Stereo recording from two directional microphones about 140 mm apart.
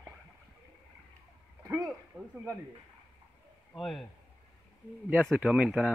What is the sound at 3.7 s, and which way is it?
Speech, centre (ahead or behind).